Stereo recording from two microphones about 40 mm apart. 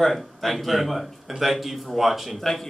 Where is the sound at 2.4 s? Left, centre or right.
Centre.